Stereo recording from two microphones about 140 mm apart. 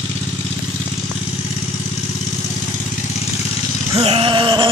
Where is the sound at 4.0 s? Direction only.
40° right (ahead or behind).